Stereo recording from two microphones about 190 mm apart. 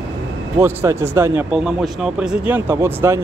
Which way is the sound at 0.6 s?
10° right (ahead or behind).